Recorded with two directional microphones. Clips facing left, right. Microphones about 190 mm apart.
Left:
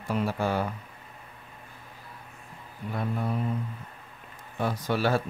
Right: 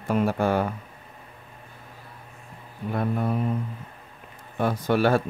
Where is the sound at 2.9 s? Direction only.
55° right (ahead or behind).